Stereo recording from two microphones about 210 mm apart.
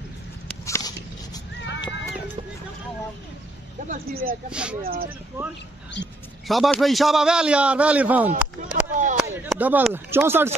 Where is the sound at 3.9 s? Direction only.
45° right (ahead or behind).